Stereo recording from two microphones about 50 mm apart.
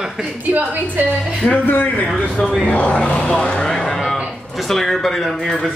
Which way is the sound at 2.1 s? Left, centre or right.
Centre.